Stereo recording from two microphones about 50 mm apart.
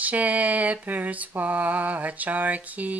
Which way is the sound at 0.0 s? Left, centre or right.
Right.